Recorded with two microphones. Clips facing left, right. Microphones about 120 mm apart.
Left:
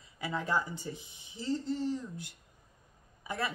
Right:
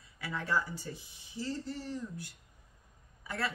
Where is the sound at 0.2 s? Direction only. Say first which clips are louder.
Left 2 dB; 20° left (ahead or behind).